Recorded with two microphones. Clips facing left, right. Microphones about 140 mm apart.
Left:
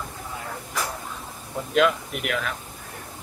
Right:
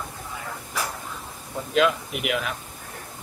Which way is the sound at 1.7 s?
5° right (ahead or behind).